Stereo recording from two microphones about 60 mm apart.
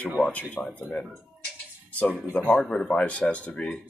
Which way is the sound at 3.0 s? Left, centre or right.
Left.